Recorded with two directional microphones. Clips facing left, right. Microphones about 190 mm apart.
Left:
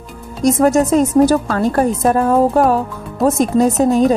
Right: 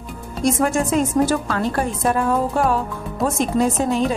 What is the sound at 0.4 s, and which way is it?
Speech, 40° left (ahead or behind).